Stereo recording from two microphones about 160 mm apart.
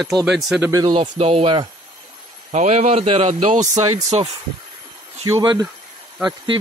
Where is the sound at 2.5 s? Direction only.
45° right (ahead or behind).